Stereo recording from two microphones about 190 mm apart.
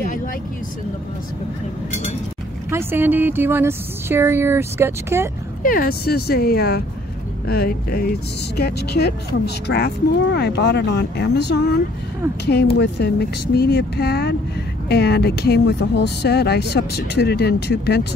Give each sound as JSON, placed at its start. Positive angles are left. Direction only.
{"t": 2.7, "sound": "a woman's voice", "side_deg": -10}
{"t": 5.6, "sound": "speech", "side_deg": 50}
{"t": 12.7, "sound": "speech", "side_deg": 60}